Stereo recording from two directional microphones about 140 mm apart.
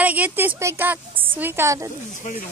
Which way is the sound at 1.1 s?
40° right (ahead or behind).